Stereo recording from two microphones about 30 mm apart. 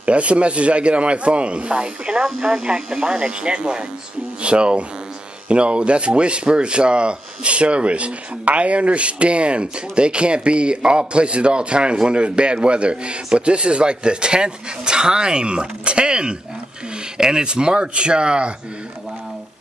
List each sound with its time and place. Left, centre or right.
0.0 s speech: right